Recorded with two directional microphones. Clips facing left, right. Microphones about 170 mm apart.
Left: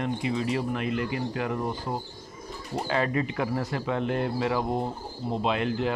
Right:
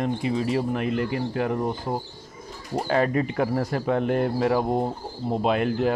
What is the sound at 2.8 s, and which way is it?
Speech, 45° right (ahead or behind).